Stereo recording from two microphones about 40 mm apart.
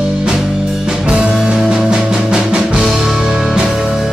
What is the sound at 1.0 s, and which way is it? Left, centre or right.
Music, right.